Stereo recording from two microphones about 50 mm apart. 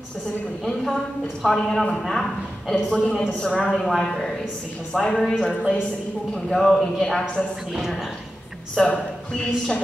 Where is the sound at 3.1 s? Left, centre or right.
Centre.